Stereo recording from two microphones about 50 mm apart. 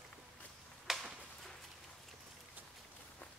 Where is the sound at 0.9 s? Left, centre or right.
Centre.